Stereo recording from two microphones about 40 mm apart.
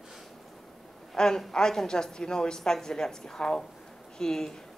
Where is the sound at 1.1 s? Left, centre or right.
Centre.